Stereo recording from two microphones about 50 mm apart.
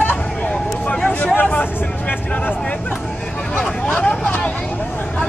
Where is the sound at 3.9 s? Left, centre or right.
Left.